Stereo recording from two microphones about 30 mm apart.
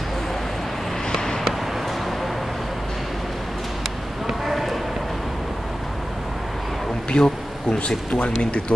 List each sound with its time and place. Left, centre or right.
1.1 s a sound: centre
4.5 s run: centre
7.1 s bee: left
8.1 s speech: left